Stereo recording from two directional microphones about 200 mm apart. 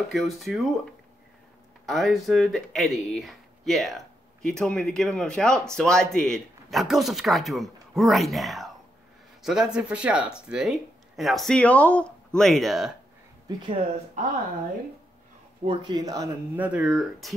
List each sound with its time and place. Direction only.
0.1 s speech: centre (ahead or behind)
1.9 s speech: centre (ahead or behind)
13.5 s speech: 20° right (ahead or behind)
15.6 s speech: 25° right (ahead or behind)
16.5 s speech: 5° right (ahead or behind)